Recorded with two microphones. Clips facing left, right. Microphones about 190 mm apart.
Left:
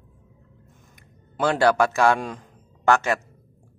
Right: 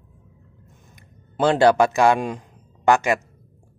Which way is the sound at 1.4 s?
20° right (ahead or behind).